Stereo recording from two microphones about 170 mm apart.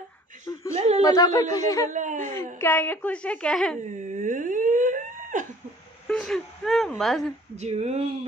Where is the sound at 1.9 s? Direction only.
50° right (ahead or behind).